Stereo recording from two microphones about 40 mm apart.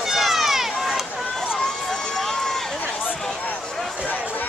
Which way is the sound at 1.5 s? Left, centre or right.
Centre.